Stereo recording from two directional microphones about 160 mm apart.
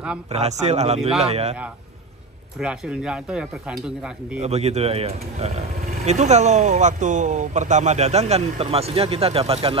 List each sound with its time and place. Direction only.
0.3 s speech: 45° right (ahead or behind)
2.6 s speech: 5° right (ahead or behind)
4.4 s speech: 40° right (ahead or behind)